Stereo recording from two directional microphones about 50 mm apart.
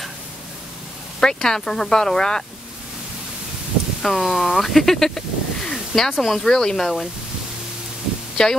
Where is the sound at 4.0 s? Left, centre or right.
Centre.